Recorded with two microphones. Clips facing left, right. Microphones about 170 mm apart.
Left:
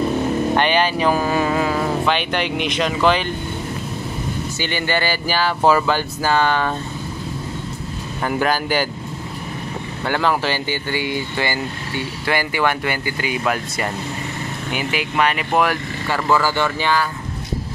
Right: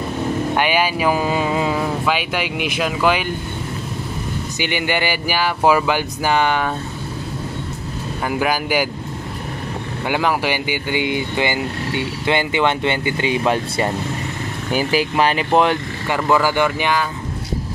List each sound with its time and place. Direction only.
0.6 s speech: 10° right (ahead or behind)
4.6 s speech: 15° right (ahead or behind)
8.3 s speech: 10° right (ahead or behind)
10.0 s speech: 15° right (ahead or behind)